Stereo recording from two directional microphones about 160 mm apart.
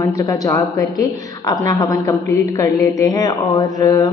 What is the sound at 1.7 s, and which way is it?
Mantra, 25° left (ahead or behind).